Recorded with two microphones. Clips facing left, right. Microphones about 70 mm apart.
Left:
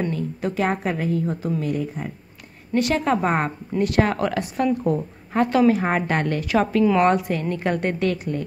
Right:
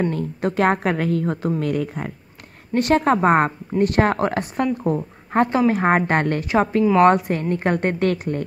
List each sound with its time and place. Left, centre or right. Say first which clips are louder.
0.1 s a woman's voice: right 2 dB; right
2.7 s a woman's voice: right 3 dB; right
6.4 s a woman's voice: right 1 dB; right
7.0 s speech: right 4 dB; right